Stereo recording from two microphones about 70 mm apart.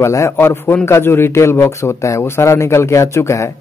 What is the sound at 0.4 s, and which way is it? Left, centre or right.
A man's voice, left.